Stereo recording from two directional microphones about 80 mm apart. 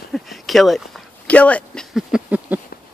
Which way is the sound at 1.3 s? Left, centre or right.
Centre.